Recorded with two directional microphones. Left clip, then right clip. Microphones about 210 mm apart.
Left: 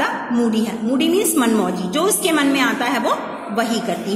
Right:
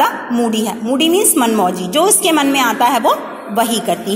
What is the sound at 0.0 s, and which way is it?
A woman's voice, 30° right (ahead or behind).